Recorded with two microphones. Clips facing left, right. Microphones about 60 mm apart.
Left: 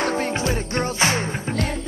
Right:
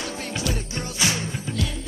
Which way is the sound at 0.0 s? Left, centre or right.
Left.